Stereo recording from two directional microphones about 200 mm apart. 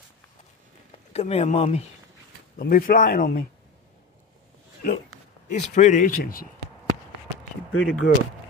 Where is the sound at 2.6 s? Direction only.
45° left (ahead or behind).